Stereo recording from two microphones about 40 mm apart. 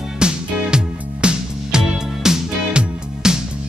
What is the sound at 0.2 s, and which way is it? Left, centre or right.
Music, right.